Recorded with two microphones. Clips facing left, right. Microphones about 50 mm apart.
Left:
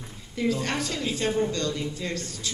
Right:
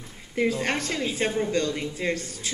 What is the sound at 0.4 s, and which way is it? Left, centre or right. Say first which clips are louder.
Speech: right 2 dB; right.